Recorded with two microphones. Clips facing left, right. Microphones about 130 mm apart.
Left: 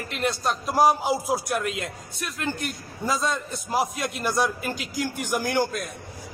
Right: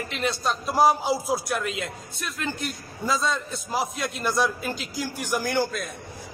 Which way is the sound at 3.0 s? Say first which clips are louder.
Even; 15° left (ahead or behind).